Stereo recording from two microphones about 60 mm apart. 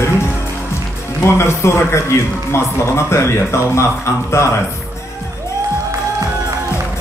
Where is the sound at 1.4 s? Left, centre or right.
Left.